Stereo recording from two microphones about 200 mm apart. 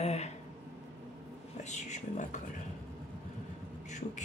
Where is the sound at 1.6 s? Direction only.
35° left (ahead or behind).